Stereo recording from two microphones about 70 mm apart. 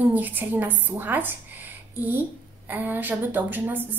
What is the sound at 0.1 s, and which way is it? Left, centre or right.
Speech, right.